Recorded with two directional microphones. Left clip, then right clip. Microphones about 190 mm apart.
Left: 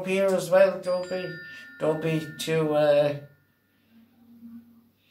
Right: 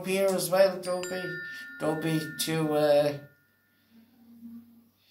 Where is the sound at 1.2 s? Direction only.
25° right (ahead or behind).